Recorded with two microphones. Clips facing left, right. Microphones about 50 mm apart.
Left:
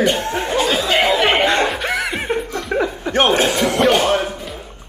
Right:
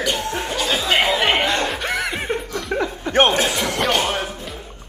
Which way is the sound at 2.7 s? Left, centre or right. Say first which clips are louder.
Left 3 dB; centre.